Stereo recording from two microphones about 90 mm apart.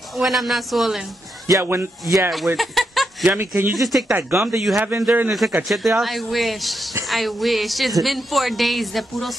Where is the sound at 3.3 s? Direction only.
25° right (ahead or behind).